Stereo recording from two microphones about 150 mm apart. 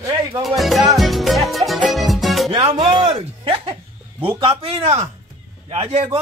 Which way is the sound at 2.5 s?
35° right (ahead or behind).